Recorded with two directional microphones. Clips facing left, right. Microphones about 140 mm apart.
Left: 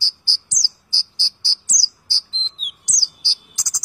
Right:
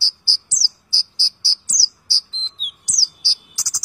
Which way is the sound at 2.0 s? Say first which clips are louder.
Left 1 dB; 20° left (ahead or behind).